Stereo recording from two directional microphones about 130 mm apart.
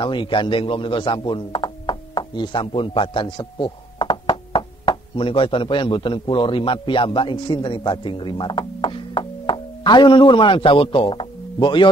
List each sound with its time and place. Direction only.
0.0 s speech: 40° left (ahead or behind)